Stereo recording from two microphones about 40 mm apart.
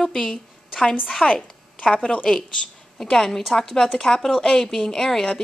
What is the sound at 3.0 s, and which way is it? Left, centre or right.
A woman's voice, centre.